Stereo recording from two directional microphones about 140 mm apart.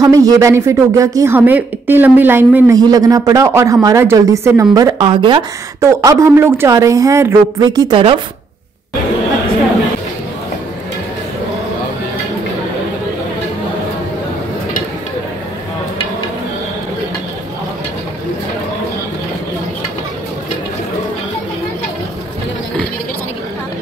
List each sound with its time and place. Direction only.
0.0 s speech: 25° right (ahead or behind)
2.7 s speech: 25° right (ahead or behind)
5.8 s speech: 20° right (ahead or behind)